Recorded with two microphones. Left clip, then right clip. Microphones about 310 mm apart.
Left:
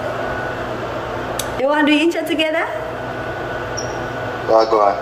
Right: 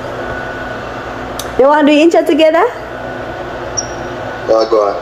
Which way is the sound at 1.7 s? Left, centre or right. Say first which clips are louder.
Right 5 dB; centre.